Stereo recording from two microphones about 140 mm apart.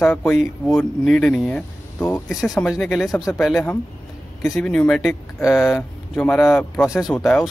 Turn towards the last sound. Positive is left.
turn(degrees=10)  # may be behind; listen again after turning